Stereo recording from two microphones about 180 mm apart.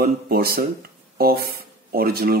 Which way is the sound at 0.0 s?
55° right (ahead or behind).